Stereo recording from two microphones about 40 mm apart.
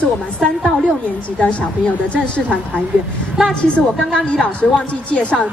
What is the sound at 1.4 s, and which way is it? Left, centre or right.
Speech, left.